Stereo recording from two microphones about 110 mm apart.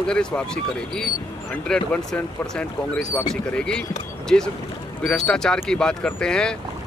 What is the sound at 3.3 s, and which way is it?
Speech, 5° left (ahead or behind).